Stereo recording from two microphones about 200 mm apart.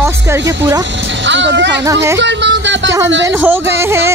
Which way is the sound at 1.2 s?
65° right (ahead or behind).